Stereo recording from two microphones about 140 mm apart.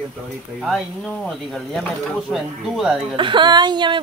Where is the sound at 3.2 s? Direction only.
35° right (ahead or behind).